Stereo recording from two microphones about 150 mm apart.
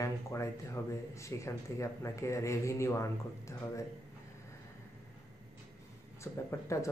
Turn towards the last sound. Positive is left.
turn(degrees=20)  # may be behind; listen again after turning